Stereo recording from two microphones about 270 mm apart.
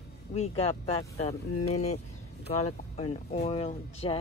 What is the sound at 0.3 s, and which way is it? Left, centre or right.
Speech, left.